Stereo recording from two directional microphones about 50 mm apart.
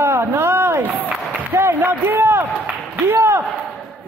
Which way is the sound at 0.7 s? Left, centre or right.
Right.